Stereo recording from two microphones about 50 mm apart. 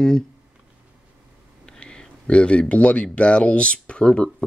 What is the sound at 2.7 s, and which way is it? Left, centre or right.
Speech, left.